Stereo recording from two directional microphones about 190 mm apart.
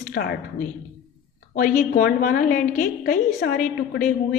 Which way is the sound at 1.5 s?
45° left (ahead or behind).